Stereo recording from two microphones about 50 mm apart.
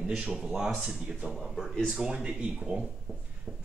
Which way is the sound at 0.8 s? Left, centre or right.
Centre.